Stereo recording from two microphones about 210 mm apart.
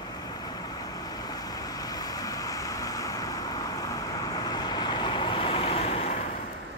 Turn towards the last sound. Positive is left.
turn(degrees=30)  # may be behind; listen again after turning